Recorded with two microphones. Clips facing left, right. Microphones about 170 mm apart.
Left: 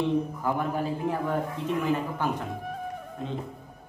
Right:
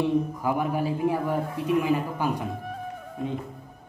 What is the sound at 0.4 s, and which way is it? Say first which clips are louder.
A man's voice: right 2 dB; 10° right (ahead or behind).